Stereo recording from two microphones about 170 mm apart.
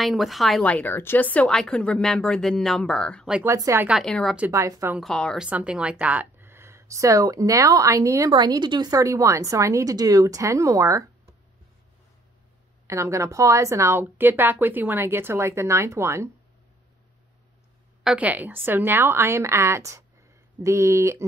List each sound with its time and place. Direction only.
0.0 s a woman's voice: centre (ahead or behind)
3.4 s speech: 20° right (ahead or behind)
3.8 s a woman's voice: centre (ahead or behind)
4.5 s a woman's voice: 20° right (ahead or behind)
4.9 s a woman's voice: 5° left (ahead or behind)
5.5 s a woman's voice: 5° right (ahead or behind)
12.8 s speech: 15° right (ahead or behind)
18.0 s speech: 10° right (ahead or behind)